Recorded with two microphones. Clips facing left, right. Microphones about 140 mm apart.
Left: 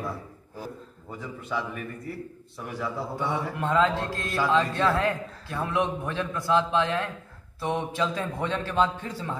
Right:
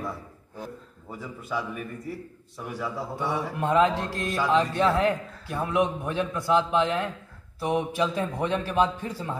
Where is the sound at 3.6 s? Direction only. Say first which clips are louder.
Right 2 dB; 15° right (ahead or behind).